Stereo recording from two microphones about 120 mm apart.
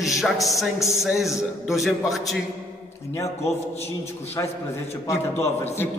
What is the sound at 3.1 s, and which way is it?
Speech, 25° left (ahead or behind).